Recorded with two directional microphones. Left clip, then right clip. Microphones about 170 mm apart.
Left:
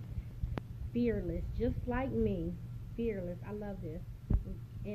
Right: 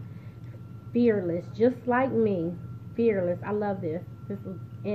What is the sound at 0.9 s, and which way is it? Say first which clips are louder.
A woman's voice: right 11 dB; 5° right (ahead or behind).